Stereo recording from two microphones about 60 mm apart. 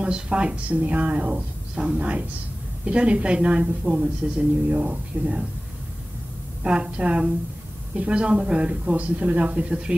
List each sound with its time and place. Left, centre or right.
0.0 s a woman's voice: centre
6.6 s a woman's voice: centre